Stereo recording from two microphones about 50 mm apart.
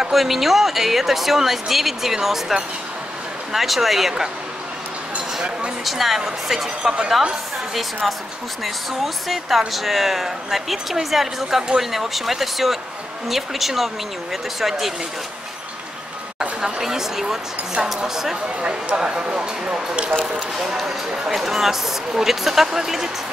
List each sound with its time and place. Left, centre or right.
0.0 s speech: centre
5.9 s speech: centre
8.6 s speech: centre
16.3 s speech: centre
20.3 s speech: centre